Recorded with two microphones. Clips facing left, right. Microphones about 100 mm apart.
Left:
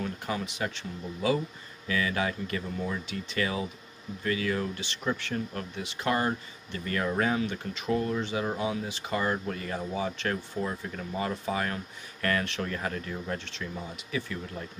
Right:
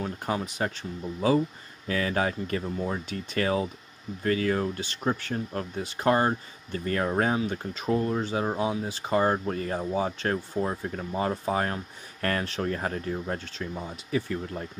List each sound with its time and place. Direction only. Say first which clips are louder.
0.0 s speech: right 3 dB; 35° right (ahead or behind)
1.9 s speech: right 2 dB; 40° right (ahead or behind)